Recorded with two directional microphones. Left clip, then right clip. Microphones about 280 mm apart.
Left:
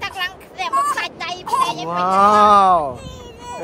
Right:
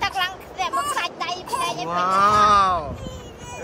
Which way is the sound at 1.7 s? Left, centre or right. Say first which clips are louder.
Left 3 dB; centre.